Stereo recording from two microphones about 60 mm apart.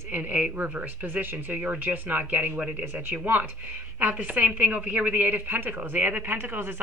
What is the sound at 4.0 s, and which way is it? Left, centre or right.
A woman's voice, right.